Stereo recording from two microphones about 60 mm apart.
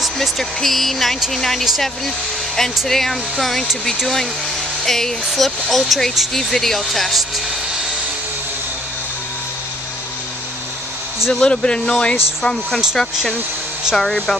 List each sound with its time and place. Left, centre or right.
0.0 s speech: centre
2.9 s speech: centre
4.8 s speech: centre
11.3 s speech: centre